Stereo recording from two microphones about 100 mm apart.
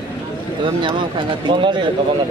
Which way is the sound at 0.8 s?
55° right (ahead or behind).